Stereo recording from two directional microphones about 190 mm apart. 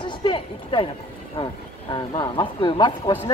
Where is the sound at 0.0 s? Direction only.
25° left (ahead or behind).